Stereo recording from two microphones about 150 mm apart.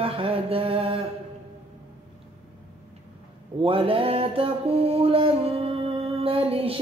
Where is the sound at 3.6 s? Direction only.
35° right (ahead or behind).